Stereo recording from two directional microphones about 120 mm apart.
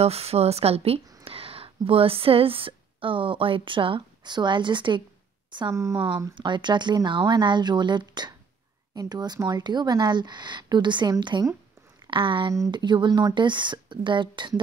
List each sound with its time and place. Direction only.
0.0 s speech: 55° right (ahead or behind); by 5.0 s 40° right (ahead or behind)
5.7 s speech: 25° right (ahead or behind)
6.3 s a woman's voice: 40° right (ahead or behind)